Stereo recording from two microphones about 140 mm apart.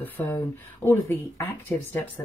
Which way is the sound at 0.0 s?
15° left (ahead or behind).